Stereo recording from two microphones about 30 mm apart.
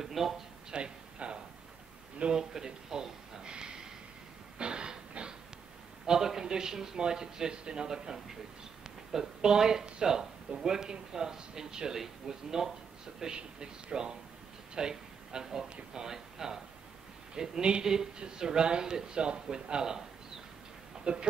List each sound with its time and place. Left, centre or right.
0.0 s speech: centre
0.7 s a sound: right
2.3 s a sound: right
6.0 s a woman's voice: centre
13.3 s speech: right; by 16.5 s centre
17.4 s speech: right